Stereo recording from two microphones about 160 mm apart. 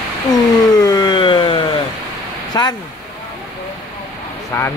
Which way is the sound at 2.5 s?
25° left (ahead or behind).